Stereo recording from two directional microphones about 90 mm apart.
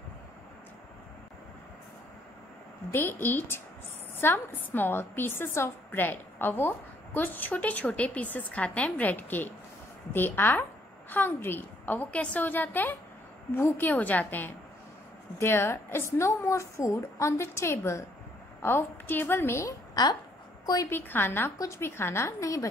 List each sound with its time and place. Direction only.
2.9 s a woman's voice: 20° left (ahead or behind)
19.9 s a woman's voice: 50° left (ahead or behind)
20.9 s a woman's voice: 25° left (ahead or behind)